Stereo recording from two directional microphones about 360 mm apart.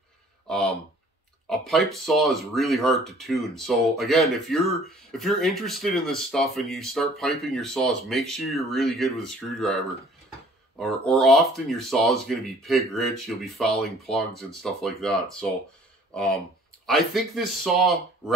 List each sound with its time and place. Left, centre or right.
0.5 s speech: centre
10.8 s speech: centre